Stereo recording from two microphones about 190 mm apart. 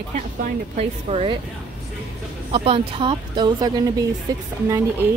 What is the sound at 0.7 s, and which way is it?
Speech, 30° right (ahead or behind).